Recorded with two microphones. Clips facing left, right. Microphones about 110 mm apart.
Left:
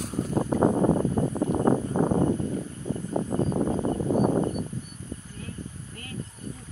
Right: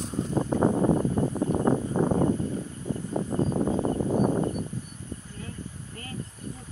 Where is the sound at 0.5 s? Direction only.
25° left (ahead or behind).